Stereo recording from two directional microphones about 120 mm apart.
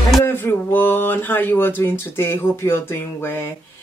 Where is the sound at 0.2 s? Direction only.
20° left (ahead or behind).